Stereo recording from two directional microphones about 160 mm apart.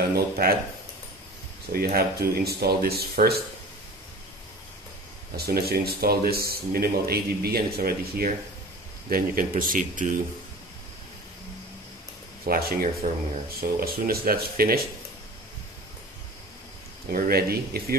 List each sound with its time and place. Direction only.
0.1 s speech: 75° right (ahead or behind)
1.7 s speech: 70° right (ahead or behind)
5.3 s speech: 75° right (ahead or behind); by 10.2 s 55° right (ahead or behind)
12.4 s speech: 65° right (ahead or behind)
17.1 s speech: 70° right (ahead or behind)